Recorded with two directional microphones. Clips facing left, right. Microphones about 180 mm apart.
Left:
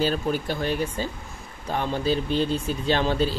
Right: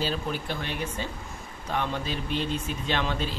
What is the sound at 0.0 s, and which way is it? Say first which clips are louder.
Speech: left 6 dB; 45° left (ahead or behind).